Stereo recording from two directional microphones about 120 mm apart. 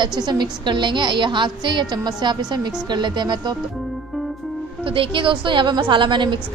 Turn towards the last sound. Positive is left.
turn(degrees=-40)  # may be behind; listen again after turning